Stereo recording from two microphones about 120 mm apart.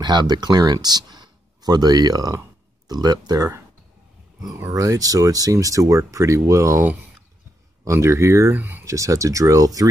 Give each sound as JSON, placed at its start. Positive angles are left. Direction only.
{"t": 0.0, "sound": "speech", "side_deg": -40}
{"t": 4.6, "sound": "speech", "side_deg": -30}